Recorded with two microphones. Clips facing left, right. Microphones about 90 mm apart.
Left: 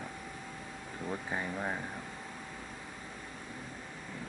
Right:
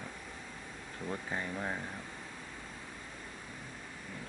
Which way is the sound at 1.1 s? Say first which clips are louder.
Left 1 dB; 15° left (ahead or behind).